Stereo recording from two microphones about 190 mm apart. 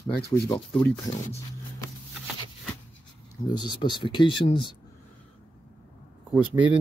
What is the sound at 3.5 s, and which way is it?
Speech, 25° left (ahead or behind).